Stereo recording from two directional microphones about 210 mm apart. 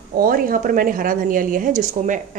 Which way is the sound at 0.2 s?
45° right (ahead or behind).